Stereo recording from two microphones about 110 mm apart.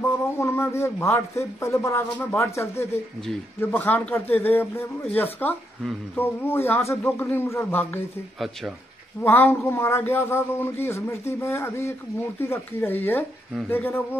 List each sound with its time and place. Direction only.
0.0 s speech: 25° left (ahead or behind)
9.2 s speech: 20° left (ahead or behind)